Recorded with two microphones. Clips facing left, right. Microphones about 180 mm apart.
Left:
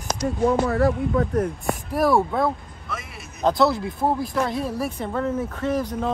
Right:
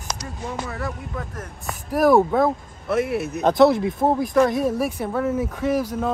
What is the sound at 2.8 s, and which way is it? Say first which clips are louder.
Speech: right 15 dB; 60° right (ahead or behind).